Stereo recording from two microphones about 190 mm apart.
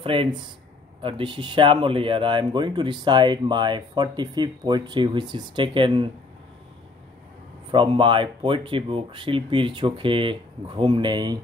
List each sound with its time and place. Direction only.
0.0 s speech: 25° right (ahead or behind)
7.7 s speech: 25° right (ahead or behind)